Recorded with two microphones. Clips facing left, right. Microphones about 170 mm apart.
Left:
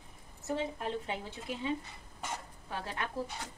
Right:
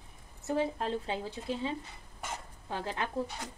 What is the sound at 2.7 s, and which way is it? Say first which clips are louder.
Speech: right 3 dB; 25° right (ahead or behind).